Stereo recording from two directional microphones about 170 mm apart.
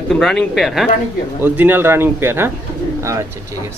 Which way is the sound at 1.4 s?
10° right (ahead or behind).